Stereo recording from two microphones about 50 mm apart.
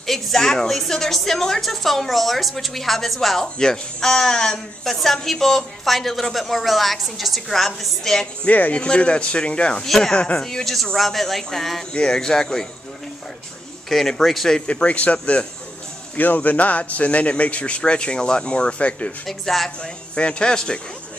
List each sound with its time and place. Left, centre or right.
0.0 s a woman's voice: centre
8.5 s speech: left
8.8 s a man's voice: left
9.8 s a woman's voice: centre
10.1 s a man's voice: left
10.4 s a woman's voice: centre
11.9 s speech: centre
13.8 s a woman's voice: centre
14.7 s a man's voice: left
19.2 s a woman's voice: centre
19.8 s a man's voice: left